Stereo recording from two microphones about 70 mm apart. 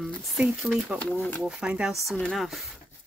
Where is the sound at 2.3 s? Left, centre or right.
Centre.